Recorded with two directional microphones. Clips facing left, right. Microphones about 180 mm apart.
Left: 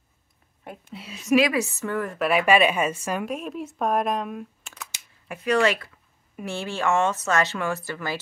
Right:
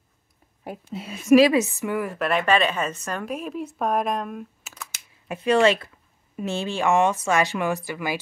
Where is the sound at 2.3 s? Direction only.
10° left (ahead or behind).